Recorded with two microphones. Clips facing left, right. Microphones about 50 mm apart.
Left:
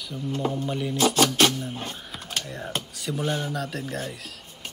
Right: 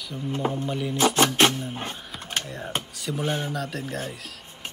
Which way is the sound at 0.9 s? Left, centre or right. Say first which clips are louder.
Right 1 dB; right.